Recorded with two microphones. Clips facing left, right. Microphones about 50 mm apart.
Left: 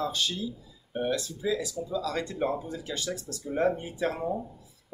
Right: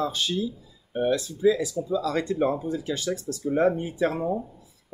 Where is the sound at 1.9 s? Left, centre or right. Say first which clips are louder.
Right 6 dB; right.